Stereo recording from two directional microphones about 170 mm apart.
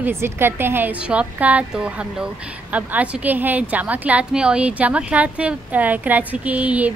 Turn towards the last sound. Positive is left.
turn(degrees=-10)  # may be behind; listen again after turning